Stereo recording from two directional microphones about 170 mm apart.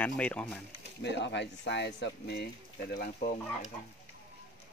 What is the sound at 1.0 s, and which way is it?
Speech, 90° left.